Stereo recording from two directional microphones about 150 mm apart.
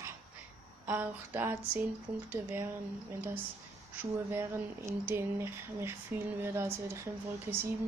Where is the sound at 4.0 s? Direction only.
15° right (ahead or behind).